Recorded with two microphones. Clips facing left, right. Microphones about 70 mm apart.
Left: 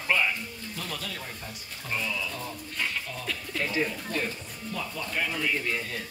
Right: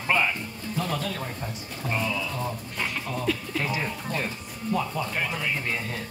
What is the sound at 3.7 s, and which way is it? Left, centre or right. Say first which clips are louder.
Speech: even; right.